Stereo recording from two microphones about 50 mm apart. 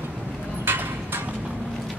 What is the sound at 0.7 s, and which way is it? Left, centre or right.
Clip-clop, right.